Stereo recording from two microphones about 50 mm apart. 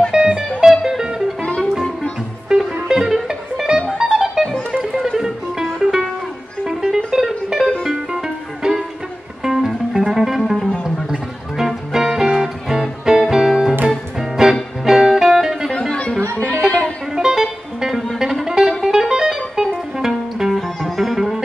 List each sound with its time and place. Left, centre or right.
0.1 s music: centre
1.4 s music: centre
2.5 s music: centre
15.9 s music: centre
17.1 s music: centre